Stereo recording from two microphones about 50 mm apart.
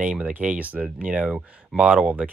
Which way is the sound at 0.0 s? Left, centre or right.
Right.